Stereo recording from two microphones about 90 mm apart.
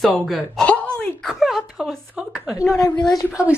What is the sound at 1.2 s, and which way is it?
Speech, 5° right (ahead or behind).